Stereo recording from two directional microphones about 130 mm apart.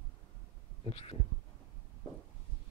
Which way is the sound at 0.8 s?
50° left (ahead or behind).